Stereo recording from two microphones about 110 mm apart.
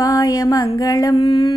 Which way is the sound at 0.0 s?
35° left (ahead or behind).